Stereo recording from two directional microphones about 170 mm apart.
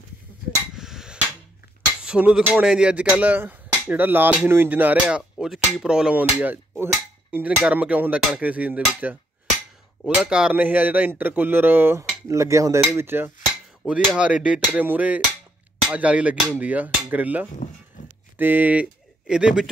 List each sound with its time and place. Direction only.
0.7 s hammer: 5° right (ahead or behind)
2.0 s speech: 5° right (ahead or behind)